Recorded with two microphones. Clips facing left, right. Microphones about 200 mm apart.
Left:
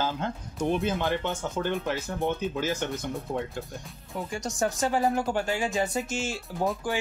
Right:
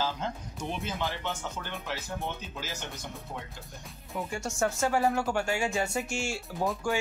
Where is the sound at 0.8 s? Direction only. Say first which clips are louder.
Left 6 dB; 55° left (ahead or behind).